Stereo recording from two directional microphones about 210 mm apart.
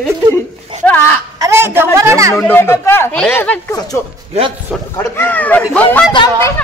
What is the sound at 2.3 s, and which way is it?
Speech, 10° left (ahead or behind).